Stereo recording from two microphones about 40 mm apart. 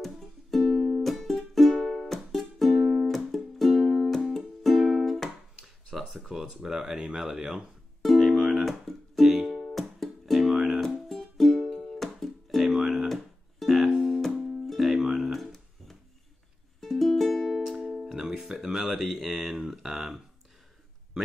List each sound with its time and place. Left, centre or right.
0.0 s music: centre
2.8 s music: centre
3.1 s music: centre
5.9 s a sound: centre
6.2 s speech: centre
8.0 s music: centre
10.5 s music: centre
11.1 s music: centre
12.6 s guitar: centre
13.1 s music: centre
16.8 s music: centre
17.5 s music: centre